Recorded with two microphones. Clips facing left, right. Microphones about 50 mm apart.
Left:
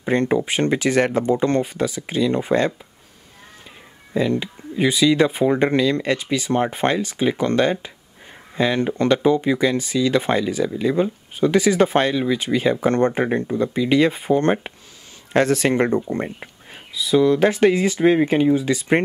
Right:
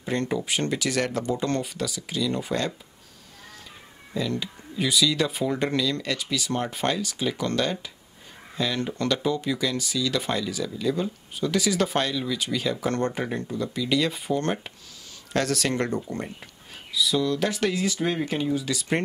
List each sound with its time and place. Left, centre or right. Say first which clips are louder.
0.0 s speech: left 8 dB; left
4.1 s speech: left 8 dB; left